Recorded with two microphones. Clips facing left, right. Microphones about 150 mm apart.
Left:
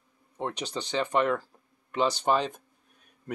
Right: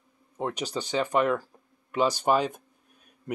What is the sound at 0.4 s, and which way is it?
Speech, 10° right (ahead or behind).